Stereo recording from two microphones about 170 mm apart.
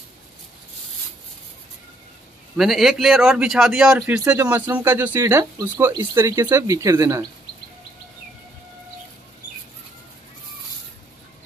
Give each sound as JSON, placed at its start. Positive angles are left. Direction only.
{"t": 2.5, "sound": "speech", "side_deg": 0}